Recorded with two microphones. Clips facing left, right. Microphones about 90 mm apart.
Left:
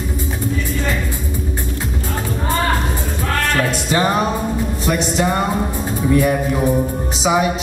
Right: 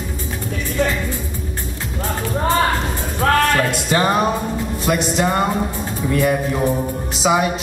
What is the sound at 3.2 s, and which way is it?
Music, 70° right (ahead or behind).